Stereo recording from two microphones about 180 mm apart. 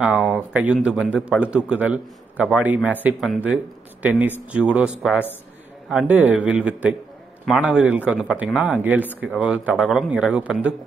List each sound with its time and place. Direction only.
0.0 s a man's voice: 5° right (ahead or behind)